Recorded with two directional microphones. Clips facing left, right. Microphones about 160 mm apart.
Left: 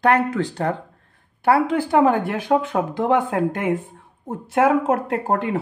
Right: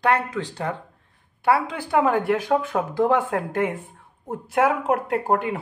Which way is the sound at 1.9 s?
25° left (ahead or behind).